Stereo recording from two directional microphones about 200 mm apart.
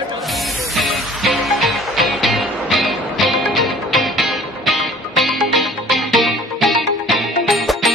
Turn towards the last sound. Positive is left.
turn(degrees=0)  # may be behind; listen again after turning